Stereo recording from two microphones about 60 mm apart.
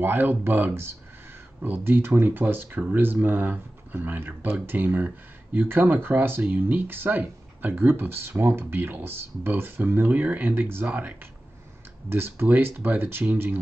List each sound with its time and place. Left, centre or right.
0.0 s speech: right
10.9 s speech: right
12.1 s speech: right